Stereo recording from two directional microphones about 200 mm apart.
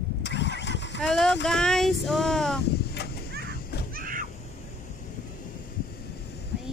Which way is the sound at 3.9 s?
45° right (ahead or behind).